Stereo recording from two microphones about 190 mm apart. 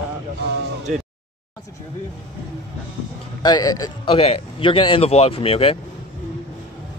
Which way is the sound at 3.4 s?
20° left (ahead or behind).